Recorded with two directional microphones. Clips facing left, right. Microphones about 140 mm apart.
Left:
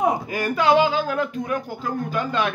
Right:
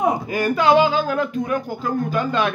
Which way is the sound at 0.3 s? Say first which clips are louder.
Right 4 dB; 30° right (ahead or behind).